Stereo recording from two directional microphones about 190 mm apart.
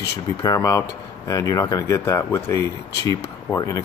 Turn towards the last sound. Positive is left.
turn(degrees=20)  # may be behind; listen again after turning